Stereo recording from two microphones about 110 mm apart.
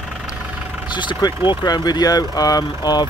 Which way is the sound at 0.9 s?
45° left (ahead or behind).